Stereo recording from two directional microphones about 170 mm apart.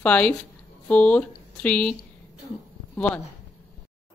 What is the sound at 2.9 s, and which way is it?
Speech, 10° left (ahead or behind).